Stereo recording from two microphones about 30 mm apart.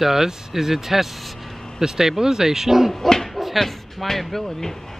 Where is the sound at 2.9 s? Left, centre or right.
Centre.